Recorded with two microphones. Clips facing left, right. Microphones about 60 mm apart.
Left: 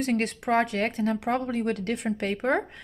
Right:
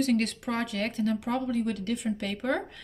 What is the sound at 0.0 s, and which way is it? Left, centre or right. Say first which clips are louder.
Speech: even; left.